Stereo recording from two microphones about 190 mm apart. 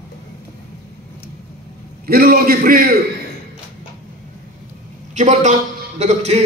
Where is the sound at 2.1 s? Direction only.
50° right (ahead or behind).